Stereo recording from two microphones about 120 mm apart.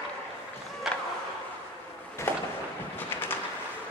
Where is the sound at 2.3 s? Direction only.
15° left (ahead or behind).